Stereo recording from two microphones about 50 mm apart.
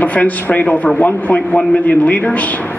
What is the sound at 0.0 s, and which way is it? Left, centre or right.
Speech, left.